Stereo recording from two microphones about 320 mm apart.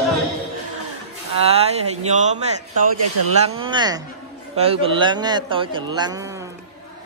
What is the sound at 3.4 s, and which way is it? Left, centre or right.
A man's voice, centre.